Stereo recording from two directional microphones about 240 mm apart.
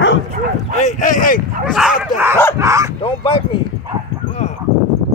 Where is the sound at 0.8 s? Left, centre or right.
Left.